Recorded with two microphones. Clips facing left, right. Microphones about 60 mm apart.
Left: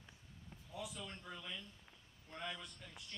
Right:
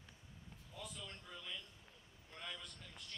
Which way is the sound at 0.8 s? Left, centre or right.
Centre.